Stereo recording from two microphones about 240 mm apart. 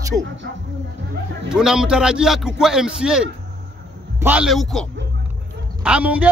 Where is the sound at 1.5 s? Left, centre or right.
Centre.